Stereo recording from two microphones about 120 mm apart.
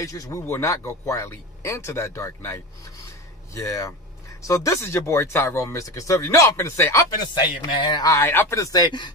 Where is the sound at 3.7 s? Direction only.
25° left (ahead or behind).